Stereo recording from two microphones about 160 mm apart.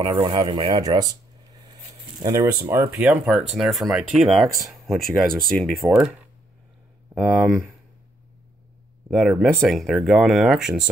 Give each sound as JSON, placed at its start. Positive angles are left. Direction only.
{"t": 0.0, "sound": "speech", "side_deg": -30}
{"t": 2.2, "sound": "speech", "side_deg": -15}
{"t": 9.1, "sound": "speech", "side_deg": 0}